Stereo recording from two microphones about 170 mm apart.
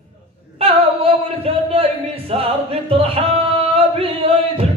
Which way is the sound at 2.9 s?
35° right (ahead or behind).